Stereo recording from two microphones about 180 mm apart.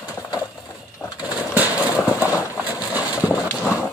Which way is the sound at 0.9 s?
20° left (ahead or behind).